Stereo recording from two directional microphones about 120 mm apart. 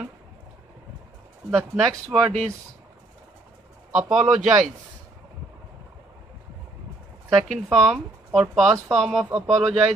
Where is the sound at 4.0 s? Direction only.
5° right (ahead or behind).